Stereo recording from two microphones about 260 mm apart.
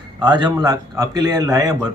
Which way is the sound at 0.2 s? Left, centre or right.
Centre.